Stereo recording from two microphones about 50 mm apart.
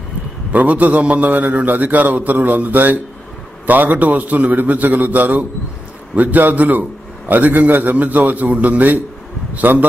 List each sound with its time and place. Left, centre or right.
0.5 s a man's voice: right